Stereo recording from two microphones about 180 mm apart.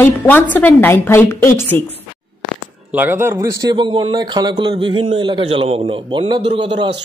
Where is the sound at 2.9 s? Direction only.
10° right (ahead or behind).